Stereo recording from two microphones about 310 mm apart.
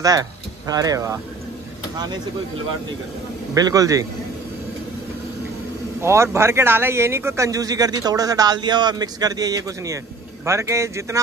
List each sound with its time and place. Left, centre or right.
0.0 s speech: centre
3.5 s speech: centre
5.9 s speech: centre